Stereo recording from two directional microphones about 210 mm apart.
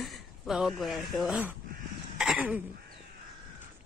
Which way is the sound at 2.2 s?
5° right (ahead or behind).